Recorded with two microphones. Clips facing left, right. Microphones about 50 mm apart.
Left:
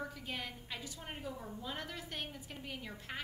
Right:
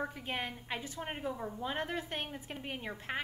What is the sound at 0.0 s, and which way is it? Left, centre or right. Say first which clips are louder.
A woman's voice: right 5 dB; right.